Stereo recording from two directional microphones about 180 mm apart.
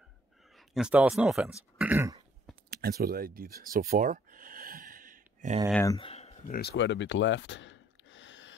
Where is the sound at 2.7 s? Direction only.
60° right (ahead or behind).